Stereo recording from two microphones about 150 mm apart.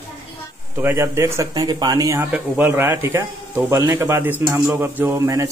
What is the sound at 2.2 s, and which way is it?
Speech, 15° right (ahead or behind).